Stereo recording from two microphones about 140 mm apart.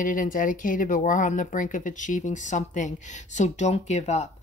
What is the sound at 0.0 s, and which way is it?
Speech, 70° left (ahead or behind).